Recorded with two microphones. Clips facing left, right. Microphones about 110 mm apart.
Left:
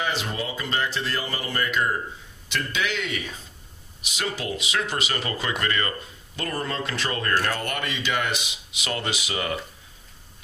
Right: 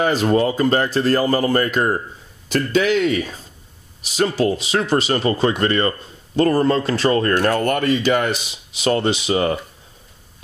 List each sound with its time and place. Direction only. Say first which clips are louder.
0.0 s speech: right 12 dB; 45° right (ahead or behind)